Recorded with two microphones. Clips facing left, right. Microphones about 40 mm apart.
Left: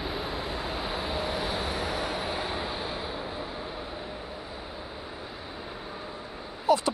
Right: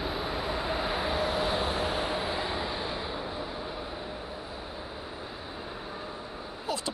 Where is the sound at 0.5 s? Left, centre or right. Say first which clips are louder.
Right 2 dB; centre.